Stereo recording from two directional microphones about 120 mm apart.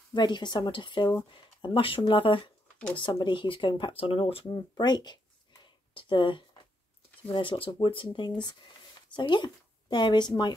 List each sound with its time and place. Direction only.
0.1 s speech: 35° left (ahead or behind)
4.7 s a sound: 35° left (ahead or behind)
7.2 s speech: 45° left (ahead or behind)